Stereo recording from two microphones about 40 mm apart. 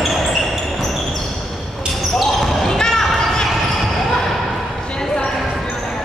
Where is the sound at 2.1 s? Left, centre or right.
Centre.